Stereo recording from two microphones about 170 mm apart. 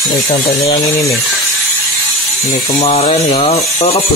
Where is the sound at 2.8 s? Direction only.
35° left (ahead or behind).